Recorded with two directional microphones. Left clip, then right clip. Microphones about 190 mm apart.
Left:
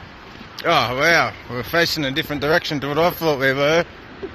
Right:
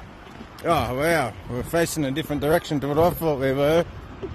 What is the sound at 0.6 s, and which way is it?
A man's voice, 15° right (ahead or behind).